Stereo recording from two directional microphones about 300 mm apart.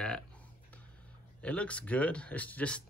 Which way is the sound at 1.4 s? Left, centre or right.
Centre.